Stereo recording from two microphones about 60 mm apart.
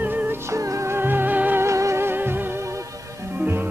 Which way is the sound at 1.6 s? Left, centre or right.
Right.